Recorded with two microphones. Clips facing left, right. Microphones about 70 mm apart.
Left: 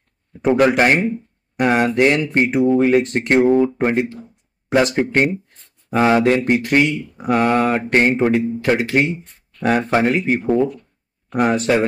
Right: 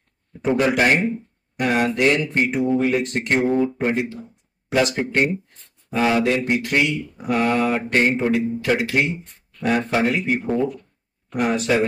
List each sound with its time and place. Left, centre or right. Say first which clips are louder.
0.4 s a man's voice: left 4 dB; left
2.7 s a man's voice: left 5 dB; left
3.4 s speech: left 5 dB; left
3.8 s a man's voice: left 4 dB; left
11.3 s speech: left 4 dB; left